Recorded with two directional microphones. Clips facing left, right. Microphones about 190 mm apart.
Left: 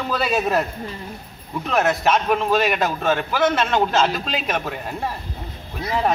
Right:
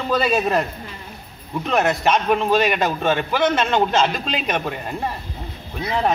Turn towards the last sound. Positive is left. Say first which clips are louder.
# right 1 dB
turn(degrees=5)  # may be behind; listen again after turning